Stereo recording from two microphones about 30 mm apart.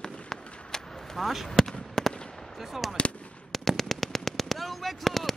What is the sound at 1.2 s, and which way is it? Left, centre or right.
Speech, centre.